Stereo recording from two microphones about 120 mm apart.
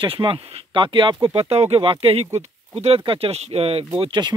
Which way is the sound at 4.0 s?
45° right (ahead or behind).